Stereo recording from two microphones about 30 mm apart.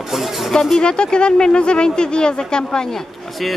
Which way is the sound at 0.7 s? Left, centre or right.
Left.